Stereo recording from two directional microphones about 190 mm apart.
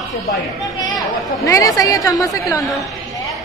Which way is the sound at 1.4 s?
20° left (ahead or behind).